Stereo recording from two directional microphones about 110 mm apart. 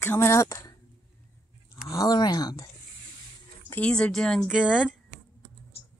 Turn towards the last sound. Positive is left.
turn(degrees=-10)  # may be behind; listen again after turning